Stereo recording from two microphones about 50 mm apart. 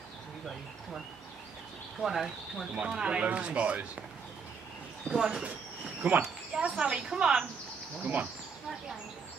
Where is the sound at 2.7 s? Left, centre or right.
Centre.